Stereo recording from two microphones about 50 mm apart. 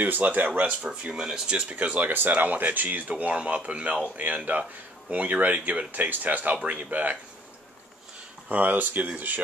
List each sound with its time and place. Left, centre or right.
0.0 s speech: right; by 1.6 s centre
1.6 s speech: right
8.5 s speech: right